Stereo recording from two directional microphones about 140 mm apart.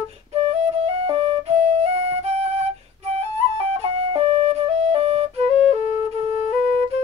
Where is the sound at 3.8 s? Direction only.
45° right (ahead or behind).